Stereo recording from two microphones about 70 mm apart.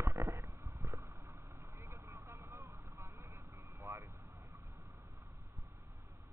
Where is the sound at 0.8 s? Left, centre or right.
Right.